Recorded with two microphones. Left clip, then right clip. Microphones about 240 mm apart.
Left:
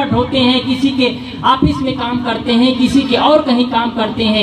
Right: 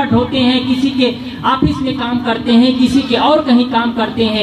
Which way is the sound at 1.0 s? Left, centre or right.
Left.